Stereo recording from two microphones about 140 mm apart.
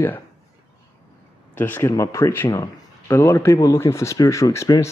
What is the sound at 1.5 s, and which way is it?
Speech, 15° left (ahead or behind).